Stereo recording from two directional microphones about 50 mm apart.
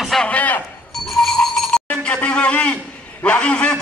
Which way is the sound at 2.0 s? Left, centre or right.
Left.